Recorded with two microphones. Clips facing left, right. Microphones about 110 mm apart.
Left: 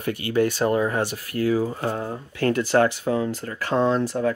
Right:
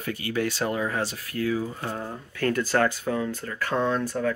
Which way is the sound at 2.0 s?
25° left (ahead or behind).